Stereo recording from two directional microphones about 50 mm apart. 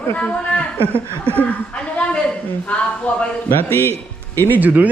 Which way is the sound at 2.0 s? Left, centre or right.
Left.